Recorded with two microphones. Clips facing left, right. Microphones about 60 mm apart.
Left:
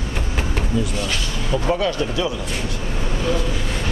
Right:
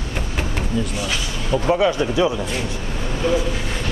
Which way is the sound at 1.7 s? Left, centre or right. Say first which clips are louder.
Right 4 dB; centre.